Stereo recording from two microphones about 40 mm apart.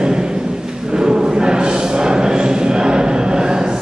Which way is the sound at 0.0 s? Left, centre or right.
Centre.